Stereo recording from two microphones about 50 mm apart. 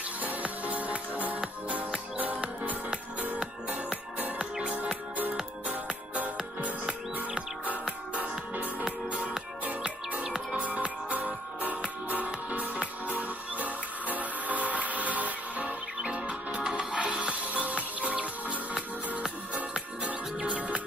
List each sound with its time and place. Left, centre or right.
0.2 s music: right
6.6 s music: right
20.4 s music: right